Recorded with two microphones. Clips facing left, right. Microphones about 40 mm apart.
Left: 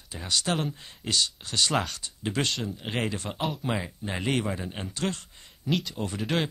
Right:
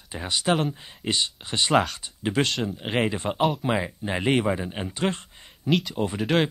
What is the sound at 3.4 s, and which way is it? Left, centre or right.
Speech, centre.